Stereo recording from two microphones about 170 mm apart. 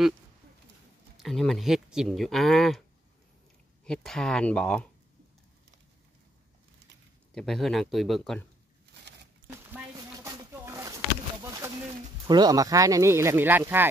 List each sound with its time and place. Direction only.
1.1 s speech: centre (ahead or behind)
3.8 s speech: 5° left (ahead or behind)
7.3 s speech: centre (ahead or behind)
9.7 s a sound: 15° right (ahead or behind)
12.3 s speech: 25° right (ahead or behind)